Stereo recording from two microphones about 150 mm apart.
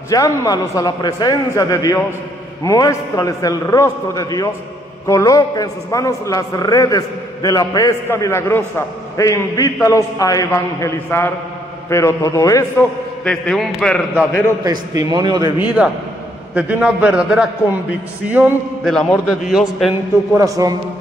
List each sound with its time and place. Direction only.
0.1 s a man's voice: 25° left (ahead or behind)
13.2 s a man's voice: 5° left (ahead or behind)
14.6 s a man's voice: 25° right (ahead or behind)
15.6 s a man's voice: 5° right (ahead or behind)
18.9 s a man's voice: centre (ahead or behind)
20.3 s a man's voice: 20° right (ahead or behind)